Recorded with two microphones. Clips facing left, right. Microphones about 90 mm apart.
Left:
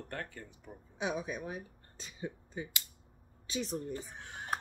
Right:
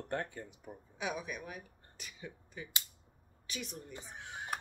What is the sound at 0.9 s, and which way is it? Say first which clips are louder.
A woman's voice: left 3 dB; 25° left (ahead or behind).